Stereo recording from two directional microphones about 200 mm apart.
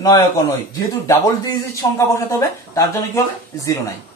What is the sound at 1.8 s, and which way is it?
Speech, 15° left (ahead or behind).